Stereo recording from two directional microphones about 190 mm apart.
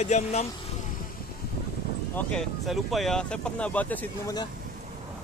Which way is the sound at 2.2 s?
5° left (ahead or behind).